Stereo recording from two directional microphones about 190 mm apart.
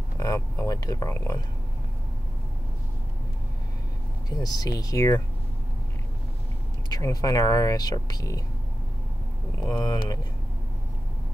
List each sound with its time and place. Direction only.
0.2 s speech: 15° left (ahead or behind)
4.3 s speech: 20° left (ahead or behind)
6.9 s speech: 20° left (ahead or behind)
9.7 s speech: 20° left (ahead or behind)